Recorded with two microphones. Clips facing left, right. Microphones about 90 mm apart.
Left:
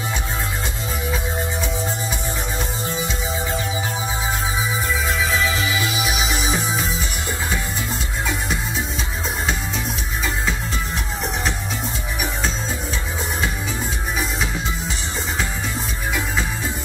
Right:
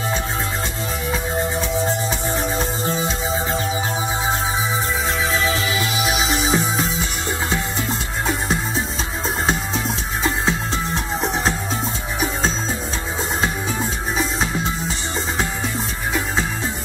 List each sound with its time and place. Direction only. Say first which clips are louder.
5.3 s music: right 1 dB; 30° right (ahead or behind)